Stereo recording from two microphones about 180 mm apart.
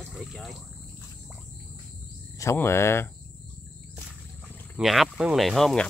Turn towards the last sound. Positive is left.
turn(degrees=0)  # may be behind; listen again after turning